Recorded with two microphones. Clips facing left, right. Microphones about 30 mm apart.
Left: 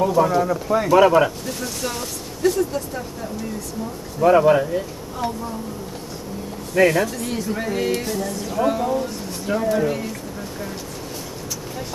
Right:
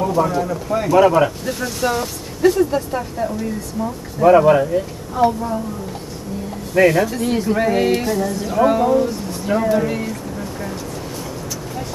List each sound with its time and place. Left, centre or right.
0.0 s speech: centre
1.4 s speech: centre
2.7 s speech: right
4.2 s speech: centre
5.1 s speech: centre
6.7 s speech: centre; by 8.0 s right
8.0 s speech: centre